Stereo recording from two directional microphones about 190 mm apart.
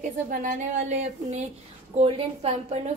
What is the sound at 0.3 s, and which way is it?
A woman's voice, 45° right (ahead or behind).